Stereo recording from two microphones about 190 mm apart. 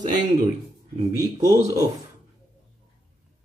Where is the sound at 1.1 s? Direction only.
20° right (ahead or behind).